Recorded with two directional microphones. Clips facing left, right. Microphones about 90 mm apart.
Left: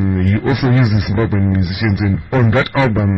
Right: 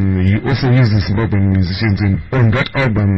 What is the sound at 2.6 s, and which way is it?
Speech, 30° left (ahead or behind).